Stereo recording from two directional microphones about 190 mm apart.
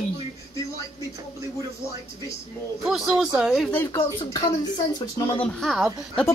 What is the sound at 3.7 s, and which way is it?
A woman's voice, 15° left (ahead or behind).